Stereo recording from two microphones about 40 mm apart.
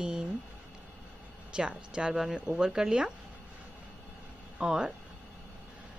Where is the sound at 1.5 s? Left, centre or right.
Right.